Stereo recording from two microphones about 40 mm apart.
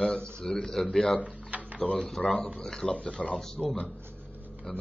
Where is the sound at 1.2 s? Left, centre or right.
Right.